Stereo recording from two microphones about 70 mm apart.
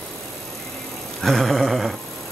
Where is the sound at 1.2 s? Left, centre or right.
Centre.